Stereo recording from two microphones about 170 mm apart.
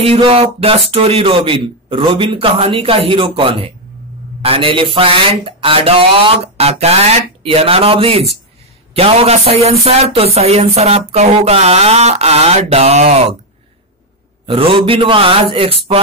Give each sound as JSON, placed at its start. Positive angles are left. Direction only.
{"t": 0.0, "sound": "a man's voice", "side_deg": -35}
{"t": 14.4, "sound": "speech", "side_deg": -30}